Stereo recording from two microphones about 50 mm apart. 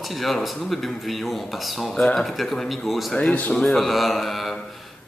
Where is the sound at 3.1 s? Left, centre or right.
Left.